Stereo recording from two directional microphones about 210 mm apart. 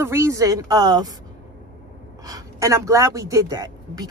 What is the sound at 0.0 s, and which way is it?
Speech, 10° right (ahead or behind).